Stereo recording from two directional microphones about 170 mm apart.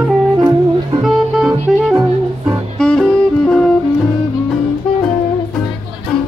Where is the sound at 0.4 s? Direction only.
25° right (ahead or behind).